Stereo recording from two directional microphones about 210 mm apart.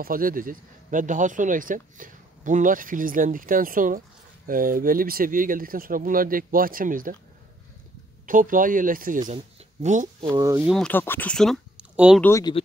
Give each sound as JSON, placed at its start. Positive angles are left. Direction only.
{"t": 0.0, "sound": "speech", "side_deg": -40}
{"t": 8.3, "sound": "speech", "side_deg": -40}
{"t": 10.3, "sound": "speech", "side_deg": -15}
{"t": 10.7, "sound": "speech", "side_deg": 5}
{"t": 12.2, "sound": "speech", "side_deg": 15}